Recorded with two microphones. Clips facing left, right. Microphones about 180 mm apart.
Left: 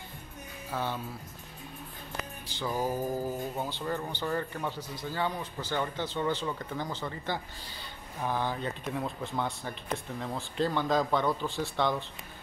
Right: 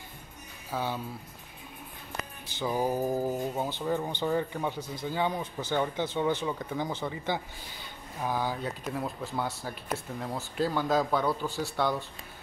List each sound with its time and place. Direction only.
0.7 s speech: 10° right (ahead or behind)
2.6 s speech: 15° right (ahead or behind)